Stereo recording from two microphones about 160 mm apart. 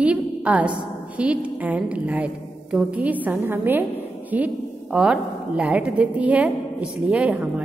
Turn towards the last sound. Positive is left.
turn(degrees=-5)  # may be behind; listen again after turning